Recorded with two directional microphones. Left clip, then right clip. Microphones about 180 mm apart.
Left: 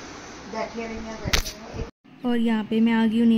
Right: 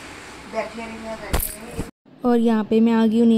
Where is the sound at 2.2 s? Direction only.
20° right (ahead or behind).